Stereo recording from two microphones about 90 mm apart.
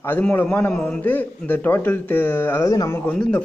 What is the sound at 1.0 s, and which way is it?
A man's voice, 20° left (ahead or behind).